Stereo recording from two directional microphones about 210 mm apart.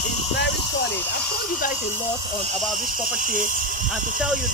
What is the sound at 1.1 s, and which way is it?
Speech, 40° left (ahead or behind).